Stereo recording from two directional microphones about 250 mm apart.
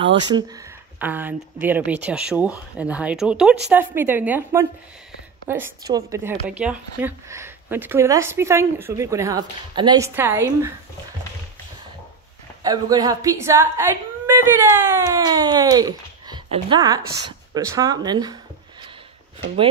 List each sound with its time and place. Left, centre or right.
0.0 s speech: centre
12.6 s speech: centre